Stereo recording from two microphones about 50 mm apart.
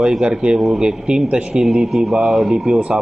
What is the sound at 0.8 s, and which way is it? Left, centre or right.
Speech, centre.